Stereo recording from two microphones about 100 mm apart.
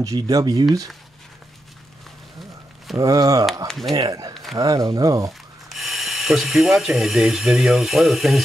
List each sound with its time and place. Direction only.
0.0 s speech: 35° right (ahead or behind)
3.0 s speech: 35° right (ahead or behind)
3.6 s speech: centre (ahead or behind)
3.9 s speech: 40° right (ahead or behind)
4.3 s a sound: centre (ahead or behind)
4.6 s speech: 40° right (ahead or behind)
5.7 s speech: centre (ahead or behind)